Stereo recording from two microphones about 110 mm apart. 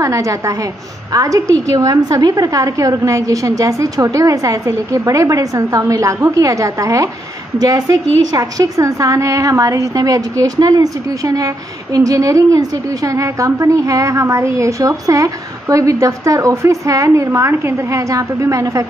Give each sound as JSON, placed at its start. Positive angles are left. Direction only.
{"t": 0.0, "sound": "a woman's voice", "side_deg": -30}